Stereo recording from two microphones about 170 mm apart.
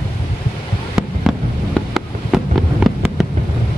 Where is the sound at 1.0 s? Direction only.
Centre (ahead or behind).